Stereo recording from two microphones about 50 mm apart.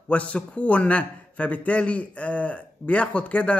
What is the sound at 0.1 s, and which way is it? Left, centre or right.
Speech, left.